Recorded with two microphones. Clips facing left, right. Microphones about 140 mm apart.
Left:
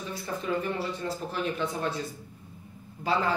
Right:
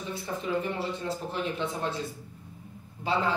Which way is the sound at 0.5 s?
20° right (ahead or behind).